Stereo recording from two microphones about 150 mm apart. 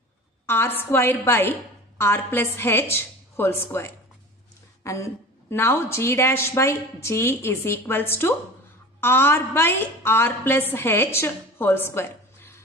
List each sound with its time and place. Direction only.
0.5 s a woman's voice: 15° left (ahead or behind)